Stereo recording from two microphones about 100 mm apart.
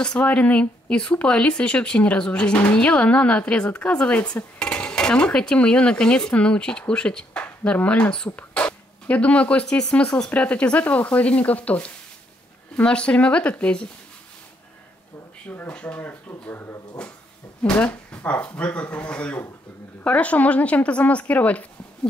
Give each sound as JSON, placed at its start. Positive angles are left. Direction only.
{"t": 0.0, "sound": "speech", "side_deg": 10}
{"t": 15.5, "sound": "speech", "side_deg": 15}
{"t": 17.6, "sound": "speech", "side_deg": 15}